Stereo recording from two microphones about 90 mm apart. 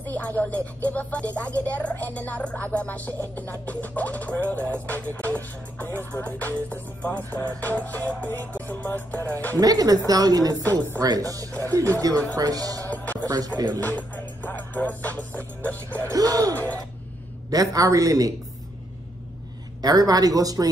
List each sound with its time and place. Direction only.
0.2 s speech: 15° left (ahead or behind)
3.3 s music: 20° left (ahead or behind)
9.6 s a woman's voice: 45° right (ahead or behind)
10.6 s music: 20° left (ahead or behind)
11.0 s a man's voice: 40° right (ahead or behind)
11.5 s music: 20° left (ahead or behind)
12.4 s a woman's voice: 45° right (ahead or behind)
12.8 s music: 20° left (ahead or behind)
16.1 s a man's voice: 40° right (ahead or behind)
16.5 s music: 20° left (ahead or behind)
17.5 s a man's voice: 45° right (ahead or behind)
19.8 s a woman's voice: 45° right (ahead or behind)